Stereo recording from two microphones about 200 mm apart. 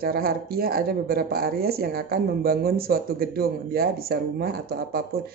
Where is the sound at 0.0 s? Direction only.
50° right (ahead or behind).